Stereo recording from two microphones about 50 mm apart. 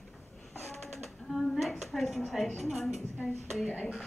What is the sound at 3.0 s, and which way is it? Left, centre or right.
Speech, left.